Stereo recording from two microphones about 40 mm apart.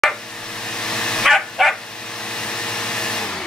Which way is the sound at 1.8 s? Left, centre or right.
Centre.